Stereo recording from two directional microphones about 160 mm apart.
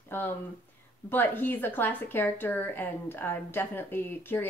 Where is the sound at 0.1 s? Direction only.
15° left (ahead or behind).